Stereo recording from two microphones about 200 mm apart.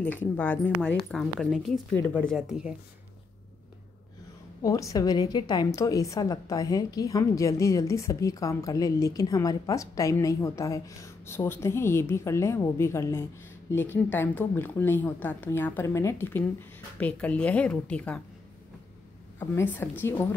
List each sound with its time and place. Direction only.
0.0 s a woman's voice: 10° left (ahead or behind)
4.6 s a woman's voice: 15° left (ahead or behind)
19.5 s a woman's voice: 10° left (ahead or behind)